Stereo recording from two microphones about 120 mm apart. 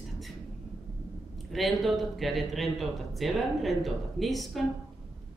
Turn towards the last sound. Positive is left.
turn(degrees=0)  # may be behind; listen again after turning